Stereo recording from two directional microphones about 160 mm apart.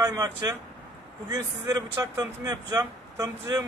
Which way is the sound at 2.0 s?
25° right (ahead or behind).